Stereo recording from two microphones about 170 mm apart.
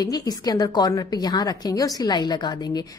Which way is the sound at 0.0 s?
20° left (ahead or behind).